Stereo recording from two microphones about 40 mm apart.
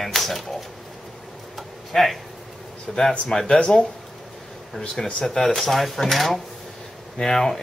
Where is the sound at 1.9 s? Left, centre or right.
Centre; by 3.8 s left.